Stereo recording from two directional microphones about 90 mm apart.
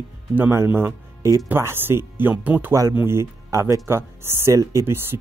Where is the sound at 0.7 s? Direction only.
25° right (ahead or behind).